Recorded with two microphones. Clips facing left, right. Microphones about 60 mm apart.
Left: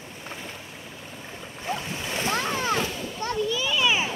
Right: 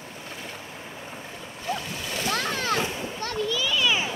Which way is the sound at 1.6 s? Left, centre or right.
Left.